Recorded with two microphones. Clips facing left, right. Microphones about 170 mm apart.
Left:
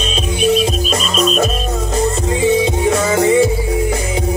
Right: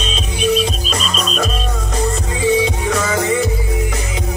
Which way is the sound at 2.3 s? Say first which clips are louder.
Left 1 dB; 30° left (ahead or behind).